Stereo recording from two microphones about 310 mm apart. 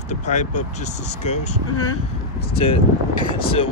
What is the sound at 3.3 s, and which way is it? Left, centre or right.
Speech, centre.